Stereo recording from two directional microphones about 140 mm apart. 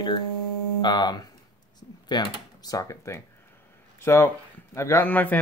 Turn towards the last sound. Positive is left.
turn(degrees=10)  # may be behind; listen again after turning